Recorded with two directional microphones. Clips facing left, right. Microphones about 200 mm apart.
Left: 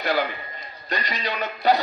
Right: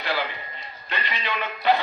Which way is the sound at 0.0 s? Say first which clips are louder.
Left 4 dB; 40° left (ahead or behind).